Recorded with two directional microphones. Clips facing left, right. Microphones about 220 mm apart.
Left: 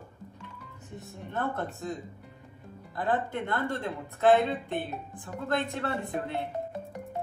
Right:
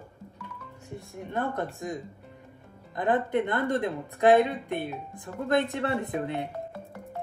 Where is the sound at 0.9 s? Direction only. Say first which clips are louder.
Right 3 dB; 15° right (ahead or behind).